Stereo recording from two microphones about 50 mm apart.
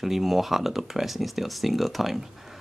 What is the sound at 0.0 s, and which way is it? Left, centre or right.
Speech, centre.